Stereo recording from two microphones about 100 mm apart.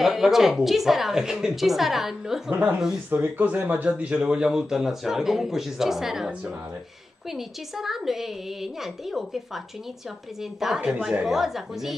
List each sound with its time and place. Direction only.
0.0 s speech: 5° right (ahead or behind)
3.1 s speech: 20° right (ahead or behind); by 11.9 s 5° right (ahead or behind)